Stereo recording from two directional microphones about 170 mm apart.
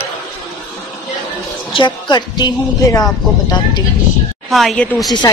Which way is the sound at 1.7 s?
30° left (ahead or behind).